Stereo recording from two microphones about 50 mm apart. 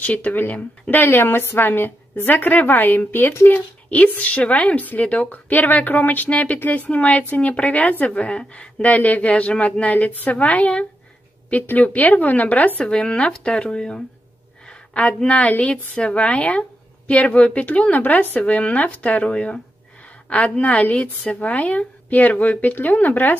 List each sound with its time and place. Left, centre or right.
0.0 s a woman's voice: left
3.9 s a woman's voice: left
12.9 s a woman's voice: centre
14.7 s a sound: left
15.2 s a woman's voice: left